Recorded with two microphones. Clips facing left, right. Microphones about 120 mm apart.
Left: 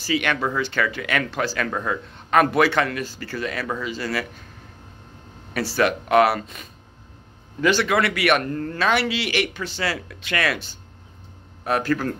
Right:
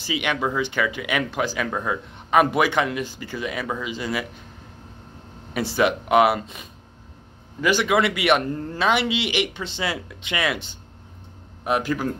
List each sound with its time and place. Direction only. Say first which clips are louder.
0.0 s speech: left 2 dB; 15° right (ahead or behind)
5.5 s a man's voice: even; 20° right (ahead or behind)
7.6 s a man's voice: even; 15° right (ahead or behind)